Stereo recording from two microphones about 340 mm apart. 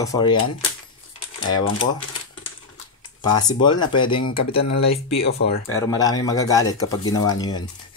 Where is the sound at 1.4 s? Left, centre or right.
Left.